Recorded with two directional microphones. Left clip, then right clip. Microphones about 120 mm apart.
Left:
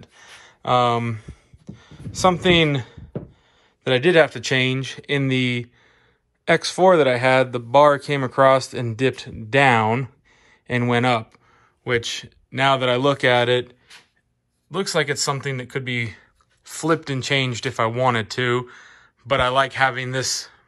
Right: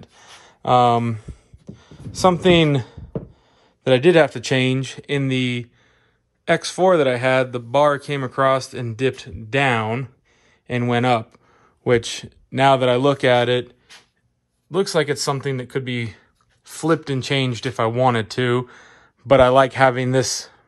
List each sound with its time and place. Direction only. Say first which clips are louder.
0.0 s a sound: even; 35° right (ahead or behind)
3.8 s speech: right 2 dB; 35° right (ahead or behind); by 10.1 s 15° right (ahead or behind)
10.7 s speech: right 1 dB; 25° right (ahead or behind)
11.8 s speech: right 4 dB; 50° right (ahead or behind); by 13.7 s 30° right (ahead or behind)
14.7 s speech: right 2 dB; 45° right (ahead or behind)
18.7 s speech: left 1 dB; 60° right (ahead or behind)